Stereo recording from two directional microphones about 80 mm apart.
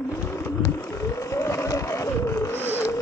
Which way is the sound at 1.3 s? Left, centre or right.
Left.